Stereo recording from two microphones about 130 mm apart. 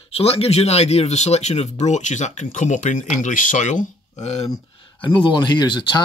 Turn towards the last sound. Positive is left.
turn(degrees=35)  # may be behind; listen again after turning